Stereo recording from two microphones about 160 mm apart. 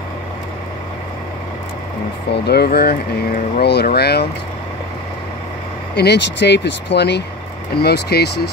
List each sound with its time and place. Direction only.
2.3 s speech: 90° left
5.9 s speech: 90° left